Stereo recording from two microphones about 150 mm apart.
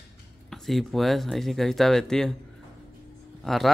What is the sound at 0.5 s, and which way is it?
Speech, centre (ahead or behind).